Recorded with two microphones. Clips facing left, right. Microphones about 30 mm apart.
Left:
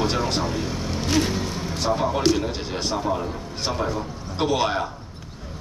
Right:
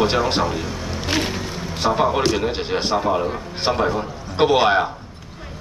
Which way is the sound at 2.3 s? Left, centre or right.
Right.